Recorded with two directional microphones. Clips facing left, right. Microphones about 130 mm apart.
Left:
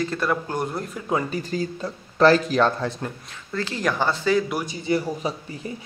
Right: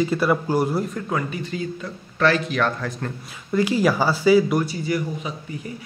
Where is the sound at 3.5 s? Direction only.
10° right (ahead or behind).